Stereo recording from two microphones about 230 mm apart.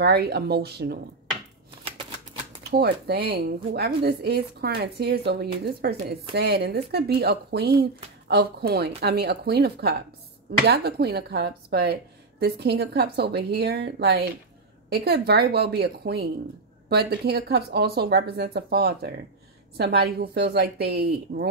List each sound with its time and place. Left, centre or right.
0.0 s a woman's voice: right
2.7 s a woman's voice: right